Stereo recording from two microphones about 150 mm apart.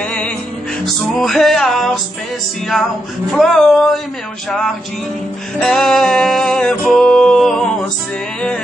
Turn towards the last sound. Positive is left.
turn(degrees=5)  # may be behind; listen again after turning